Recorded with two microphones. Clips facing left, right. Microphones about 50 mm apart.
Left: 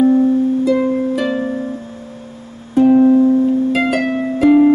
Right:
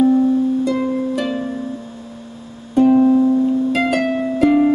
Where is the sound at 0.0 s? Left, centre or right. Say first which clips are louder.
Left 2 dB; left.